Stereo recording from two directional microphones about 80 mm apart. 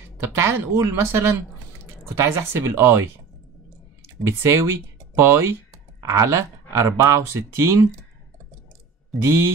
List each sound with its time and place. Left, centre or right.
0.2 s speech: right
4.3 s speech: right
9.2 s speech: right